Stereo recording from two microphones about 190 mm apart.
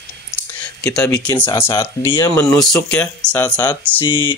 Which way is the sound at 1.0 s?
20° left (ahead or behind).